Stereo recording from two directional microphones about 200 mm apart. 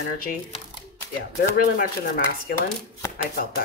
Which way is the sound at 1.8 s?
50° left (ahead or behind).